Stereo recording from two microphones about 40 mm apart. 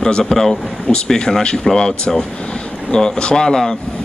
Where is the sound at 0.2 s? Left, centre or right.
Centre.